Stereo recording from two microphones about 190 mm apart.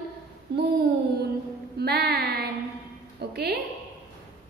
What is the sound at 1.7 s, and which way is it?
A woman's voice, 55° right (ahead or behind).